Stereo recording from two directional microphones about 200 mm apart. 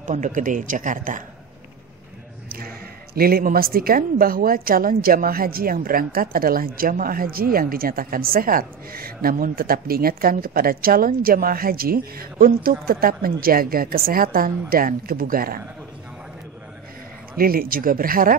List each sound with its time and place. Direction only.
0.0 s speech: 40° right (ahead or behind)
3.2 s a woman's voice: 50° right (ahead or behind)
17.4 s a woman's voice: 45° right (ahead or behind)